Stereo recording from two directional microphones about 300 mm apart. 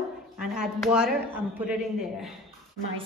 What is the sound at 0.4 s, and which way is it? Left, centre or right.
A woman's voice, centre.